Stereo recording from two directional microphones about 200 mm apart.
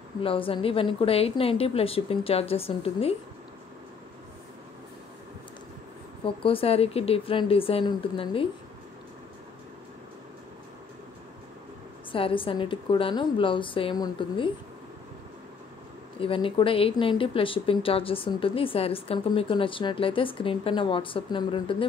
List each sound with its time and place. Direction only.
0.2 s speech: 25° left (ahead or behind)
6.2 s speech: 25° left (ahead or behind)
12.1 s speech: 25° left (ahead or behind)
16.2 s speech: 25° left (ahead or behind)